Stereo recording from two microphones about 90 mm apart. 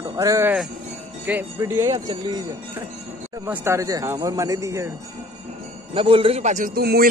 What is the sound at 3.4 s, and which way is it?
Speech, 30° right (ahead or behind).